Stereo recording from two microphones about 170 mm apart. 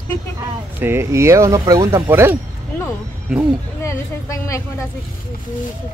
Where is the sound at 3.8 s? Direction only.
20° left (ahead or behind).